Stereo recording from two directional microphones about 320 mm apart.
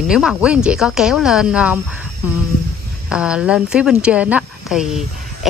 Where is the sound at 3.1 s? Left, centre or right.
Centre.